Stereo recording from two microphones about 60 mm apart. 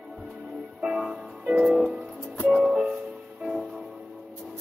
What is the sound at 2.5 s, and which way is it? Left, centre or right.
Music, centre.